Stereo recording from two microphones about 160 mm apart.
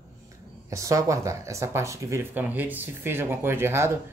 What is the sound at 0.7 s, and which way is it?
Speech, 20° right (ahead or behind).